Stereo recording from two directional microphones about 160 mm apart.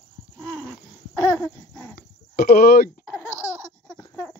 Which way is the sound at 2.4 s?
75° left (ahead or behind).